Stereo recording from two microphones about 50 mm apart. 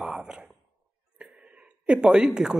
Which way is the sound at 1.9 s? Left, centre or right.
Centre.